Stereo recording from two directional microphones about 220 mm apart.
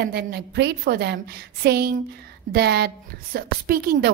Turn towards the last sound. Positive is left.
turn(degrees=-45)  # may be behind; listen again after turning